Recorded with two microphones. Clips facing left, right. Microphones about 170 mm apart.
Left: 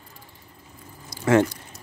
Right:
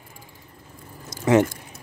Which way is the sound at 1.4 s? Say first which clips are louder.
Right 1 dB; 50° right (ahead or behind).